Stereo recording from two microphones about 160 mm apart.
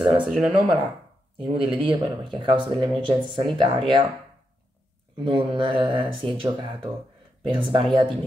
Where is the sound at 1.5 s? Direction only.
35° right (ahead or behind).